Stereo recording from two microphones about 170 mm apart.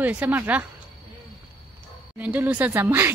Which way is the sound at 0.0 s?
10° right (ahead or behind).